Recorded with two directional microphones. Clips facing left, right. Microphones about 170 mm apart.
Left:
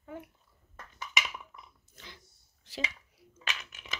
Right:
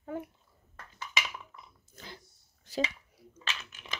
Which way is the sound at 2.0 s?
40° right (ahead or behind).